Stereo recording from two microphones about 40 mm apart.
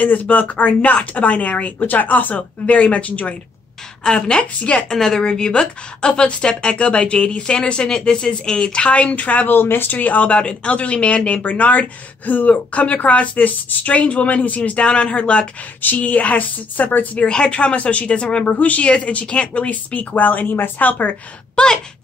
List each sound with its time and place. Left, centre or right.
0.0 s speech: left
2.6 s speech: left
4.0 s speech: left
4.6 s speech: left
4.8 s speech: centre
9.1 s speech: left
9.5 s speech: left
9.9 s speech: left
15.8 s a woman's voice: left
17.5 s speech: left
21.6 s speech: left